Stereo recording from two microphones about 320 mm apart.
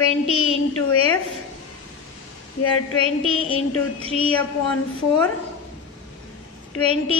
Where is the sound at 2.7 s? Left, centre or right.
Left.